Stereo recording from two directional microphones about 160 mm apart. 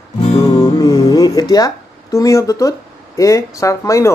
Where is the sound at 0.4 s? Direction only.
20° left (ahead or behind).